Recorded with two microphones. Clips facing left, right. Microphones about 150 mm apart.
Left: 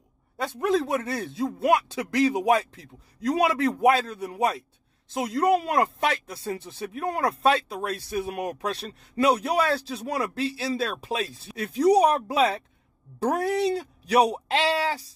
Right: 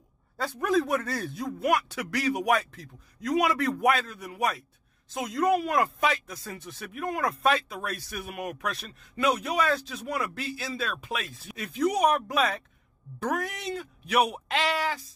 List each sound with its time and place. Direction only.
0.4 s a man's voice: 25° left (ahead or behind)